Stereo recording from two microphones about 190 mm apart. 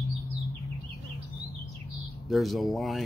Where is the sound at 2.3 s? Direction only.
Centre (ahead or behind).